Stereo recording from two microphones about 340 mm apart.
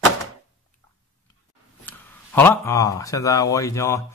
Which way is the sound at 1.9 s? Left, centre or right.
Centre.